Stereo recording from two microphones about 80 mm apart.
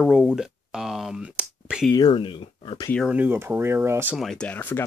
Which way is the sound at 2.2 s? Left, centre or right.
Left.